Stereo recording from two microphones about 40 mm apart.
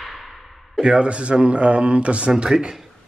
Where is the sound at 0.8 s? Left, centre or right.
Right.